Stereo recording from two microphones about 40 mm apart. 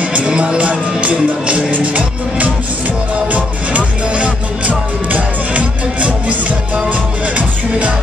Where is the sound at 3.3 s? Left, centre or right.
Right.